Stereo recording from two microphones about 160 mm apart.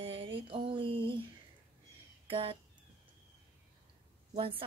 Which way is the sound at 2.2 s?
35° right (ahead or behind).